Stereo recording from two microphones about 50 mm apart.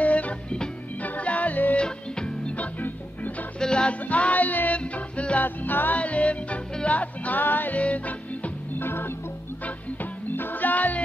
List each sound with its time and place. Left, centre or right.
0.0 s music: left
1.8 s music: centre
3.5 s music: centre
4.1 s music: left
5.9 s music: left
8.7 s organ: left
10.3 s music: left